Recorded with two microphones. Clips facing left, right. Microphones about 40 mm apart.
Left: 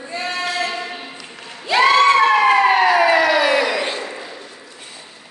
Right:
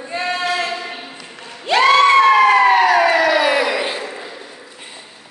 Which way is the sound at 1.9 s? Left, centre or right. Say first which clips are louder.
Right 4 dB; centre.